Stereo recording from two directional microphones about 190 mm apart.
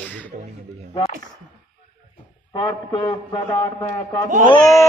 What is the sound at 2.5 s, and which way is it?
A man's voice, 25° left (ahead or behind).